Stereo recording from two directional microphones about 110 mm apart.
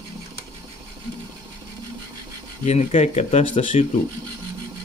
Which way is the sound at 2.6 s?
85° left.